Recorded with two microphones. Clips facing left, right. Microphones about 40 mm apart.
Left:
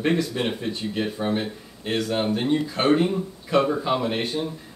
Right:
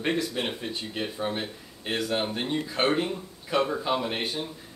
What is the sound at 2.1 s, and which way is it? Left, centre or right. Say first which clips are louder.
Speech: left 7 dB; centre.